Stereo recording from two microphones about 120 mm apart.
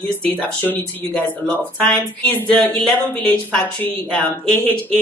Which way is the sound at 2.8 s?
Centre (ahead or behind).